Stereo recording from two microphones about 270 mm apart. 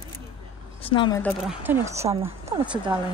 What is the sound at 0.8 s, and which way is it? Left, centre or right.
Speech, centre.